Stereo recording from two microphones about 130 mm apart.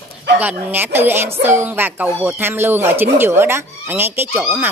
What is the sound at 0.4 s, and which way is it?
Speech, 15° right (ahead or behind).